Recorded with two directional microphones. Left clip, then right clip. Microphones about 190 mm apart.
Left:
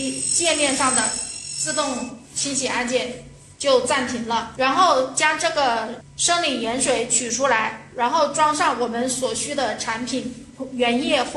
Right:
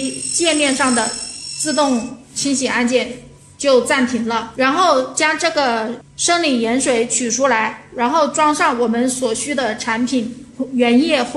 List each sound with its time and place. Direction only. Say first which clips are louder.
0.4 s speech: right 4 dB; 45° right (ahead or behind)
2.4 s a woman's voice: right 6 dB; 45° right (ahead or behind)